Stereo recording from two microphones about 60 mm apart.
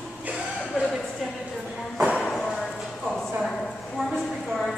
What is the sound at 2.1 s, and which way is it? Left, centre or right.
Music, centre.